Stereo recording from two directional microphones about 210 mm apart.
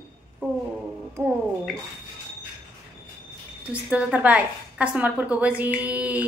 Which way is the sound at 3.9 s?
5° right (ahead or behind).